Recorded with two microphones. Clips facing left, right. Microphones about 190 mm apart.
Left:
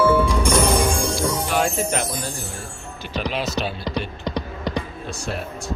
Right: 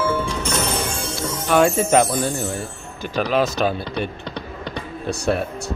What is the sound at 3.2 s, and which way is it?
Speech, 50° right (ahead or behind).